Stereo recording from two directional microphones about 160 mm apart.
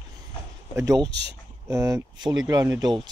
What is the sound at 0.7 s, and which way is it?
Speech, 25° right (ahead or behind).